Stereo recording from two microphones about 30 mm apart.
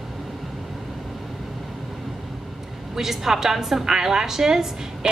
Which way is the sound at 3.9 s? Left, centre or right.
Right.